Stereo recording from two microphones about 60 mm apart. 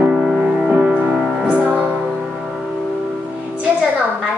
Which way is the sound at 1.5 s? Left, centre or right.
Right.